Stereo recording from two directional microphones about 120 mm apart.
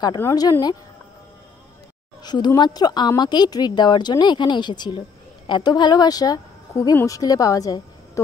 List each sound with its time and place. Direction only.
0.2 s a woman's voice: 30° left (ahead or behind)
2.2 s a woman's voice: 35° left (ahead or behind)